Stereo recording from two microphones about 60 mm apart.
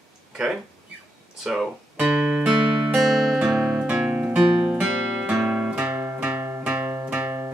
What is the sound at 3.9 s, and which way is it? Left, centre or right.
Music, right.